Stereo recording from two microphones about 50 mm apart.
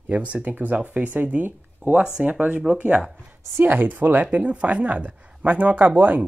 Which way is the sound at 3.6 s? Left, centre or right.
Right.